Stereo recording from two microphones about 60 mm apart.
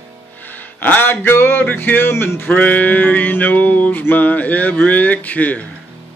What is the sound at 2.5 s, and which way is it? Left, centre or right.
Speech, left.